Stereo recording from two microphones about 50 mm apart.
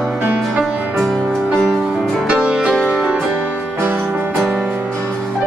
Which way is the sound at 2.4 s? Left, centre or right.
Centre.